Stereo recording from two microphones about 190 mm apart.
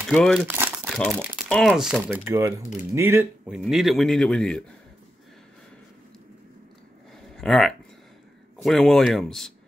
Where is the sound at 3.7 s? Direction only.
Centre (ahead or behind).